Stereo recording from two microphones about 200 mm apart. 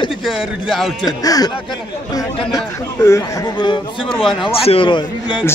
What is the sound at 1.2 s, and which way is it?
A man's voice, 20° left (ahead or behind).